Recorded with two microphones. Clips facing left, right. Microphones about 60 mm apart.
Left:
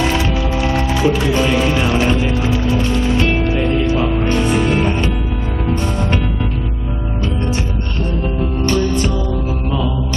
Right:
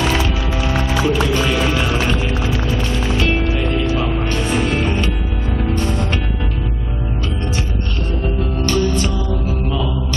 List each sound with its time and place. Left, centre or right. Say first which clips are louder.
1.0 s music: left 3 dB; left
1.7 s music: left 3 dB; centre
3.2 s music: left 2 dB; left
4.7 s music: left 2 dB; centre
8.4 s music: left 2 dB; left